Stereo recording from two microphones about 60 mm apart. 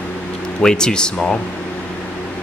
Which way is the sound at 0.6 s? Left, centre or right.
Centre.